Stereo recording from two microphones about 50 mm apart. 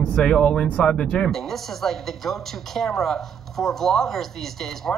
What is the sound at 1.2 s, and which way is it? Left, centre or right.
A woman's voice, centre.